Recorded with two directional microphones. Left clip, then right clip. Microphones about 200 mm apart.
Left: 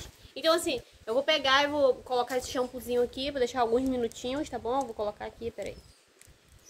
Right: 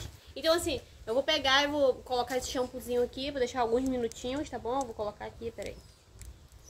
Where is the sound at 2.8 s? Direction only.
15° left (ahead or behind).